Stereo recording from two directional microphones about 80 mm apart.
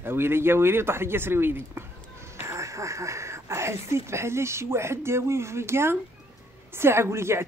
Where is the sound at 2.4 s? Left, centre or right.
Right.